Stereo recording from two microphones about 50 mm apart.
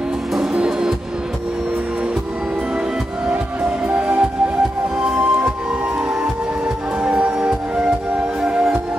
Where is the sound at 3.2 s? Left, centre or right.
Right.